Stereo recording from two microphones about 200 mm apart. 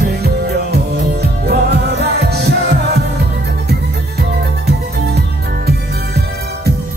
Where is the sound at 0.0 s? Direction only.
55° right (ahead or behind).